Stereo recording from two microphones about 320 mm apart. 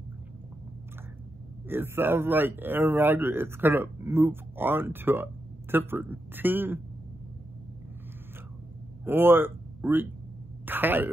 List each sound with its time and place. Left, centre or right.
1.7 s speech: centre
9.0 s speech: centre